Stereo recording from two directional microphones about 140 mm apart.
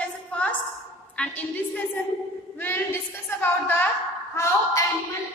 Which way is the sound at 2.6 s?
15° left (ahead or behind).